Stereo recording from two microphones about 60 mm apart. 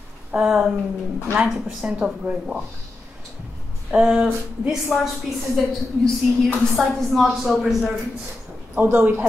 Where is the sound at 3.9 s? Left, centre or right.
Centre.